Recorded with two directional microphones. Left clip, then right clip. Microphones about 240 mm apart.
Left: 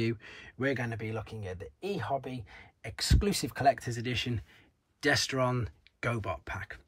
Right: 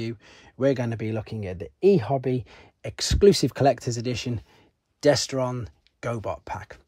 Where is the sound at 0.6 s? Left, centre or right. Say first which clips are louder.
Right 9 dB; centre.